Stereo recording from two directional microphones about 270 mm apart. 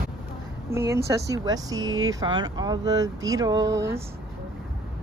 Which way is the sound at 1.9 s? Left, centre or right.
Right.